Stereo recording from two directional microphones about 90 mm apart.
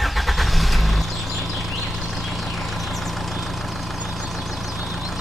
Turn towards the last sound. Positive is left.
turn(degrees=0)  # may be behind; listen again after turning